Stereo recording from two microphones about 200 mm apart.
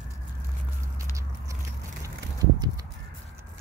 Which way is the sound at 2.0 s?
15° right (ahead or behind).